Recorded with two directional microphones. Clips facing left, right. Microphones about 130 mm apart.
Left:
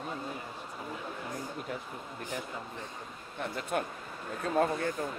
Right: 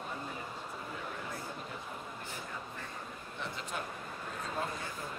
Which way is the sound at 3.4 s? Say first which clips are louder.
Left 7 dB; 55° left (ahead or behind).